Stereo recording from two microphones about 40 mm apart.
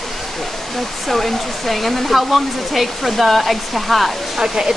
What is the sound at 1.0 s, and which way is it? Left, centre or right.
Speech, centre.